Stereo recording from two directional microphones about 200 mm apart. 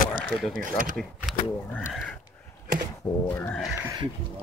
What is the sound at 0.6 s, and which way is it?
Speech, 40° right (ahead or behind).